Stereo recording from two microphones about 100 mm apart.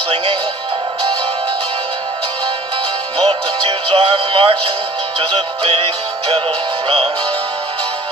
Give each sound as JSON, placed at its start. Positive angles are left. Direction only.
{"t": 3.3, "sound": "music", "side_deg": -70}